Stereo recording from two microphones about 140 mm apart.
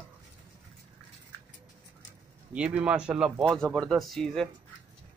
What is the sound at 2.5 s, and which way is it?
Speech, 10° right (ahead or behind).